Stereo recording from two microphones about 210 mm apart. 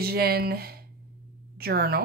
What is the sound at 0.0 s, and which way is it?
Speech, 45° right (ahead or behind).